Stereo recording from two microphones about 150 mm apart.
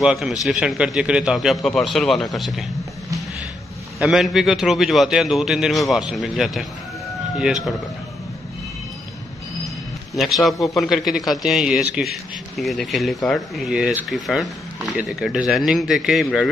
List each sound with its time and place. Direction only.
0.0 s a man's voice: 5° right (ahead or behind)
4.0 s a man's voice: centre (ahead or behind)
10.1 s a man's voice: centre (ahead or behind)